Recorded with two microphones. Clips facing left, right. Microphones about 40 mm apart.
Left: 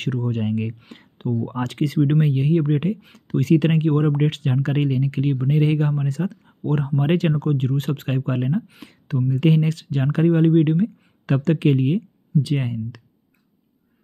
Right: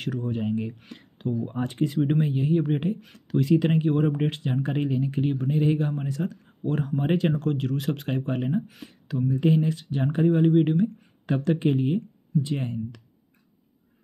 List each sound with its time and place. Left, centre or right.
0.0 s speech: left
0.8 s speech: left
1.6 s speech: left
2.0 s speech: left
2.2 s speech: left
6.4 s a sound: left
7.0 s speech: left
9.3 s speech: left
10.2 s speech: left
10.8 s speech: left